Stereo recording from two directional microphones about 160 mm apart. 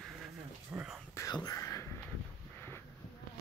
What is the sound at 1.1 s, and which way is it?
Whispering, 20° left (ahead or behind).